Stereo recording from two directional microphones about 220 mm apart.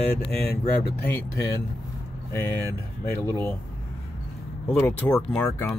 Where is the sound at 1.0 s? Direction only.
10° left (ahead or behind).